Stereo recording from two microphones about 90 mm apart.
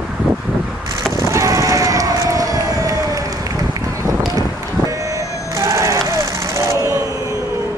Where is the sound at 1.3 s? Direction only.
35° right (ahead or behind).